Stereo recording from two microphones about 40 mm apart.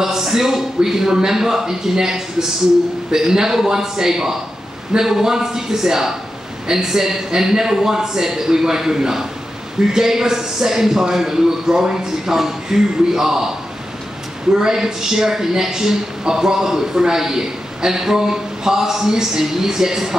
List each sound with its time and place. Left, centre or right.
0.0 s speech: centre
14.5 s speech: centre